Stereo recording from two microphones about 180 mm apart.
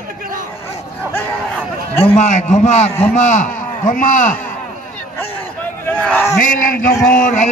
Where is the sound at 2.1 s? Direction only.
40° left (ahead or behind).